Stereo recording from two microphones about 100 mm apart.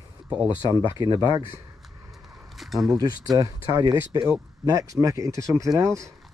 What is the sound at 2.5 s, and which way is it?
Speech, centre (ahead or behind).